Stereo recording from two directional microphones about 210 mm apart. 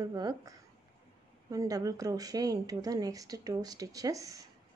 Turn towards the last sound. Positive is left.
turn(degrees=-15)  # may be behind; listen again after turning